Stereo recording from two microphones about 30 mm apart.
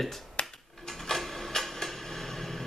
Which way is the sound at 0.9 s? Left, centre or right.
Centre.